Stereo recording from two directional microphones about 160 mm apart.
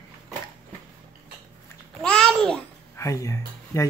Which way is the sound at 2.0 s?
5° left (ahead or behind).